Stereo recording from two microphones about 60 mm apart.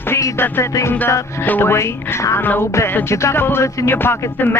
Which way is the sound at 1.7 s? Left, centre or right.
Left.